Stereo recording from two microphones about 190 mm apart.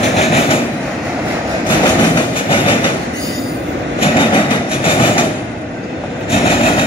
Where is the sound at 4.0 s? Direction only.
25° left (ahead or behind).